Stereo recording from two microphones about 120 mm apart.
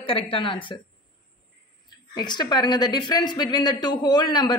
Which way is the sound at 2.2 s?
35° left (ahead or behind).